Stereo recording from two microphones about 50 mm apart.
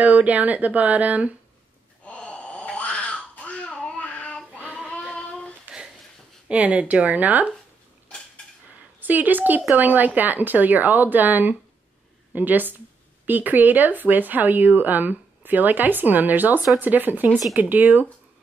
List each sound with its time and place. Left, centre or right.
0.0 s speech: right
2.1 s a sound: left
4.6 s child singing: right
5.1 s child singing: left
5.7 s a sound: centre
6.5 s speech: right
9.0 s speech: right